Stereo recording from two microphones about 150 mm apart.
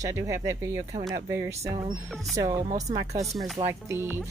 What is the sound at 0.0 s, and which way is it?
Speech, 20° right (ahead or behind).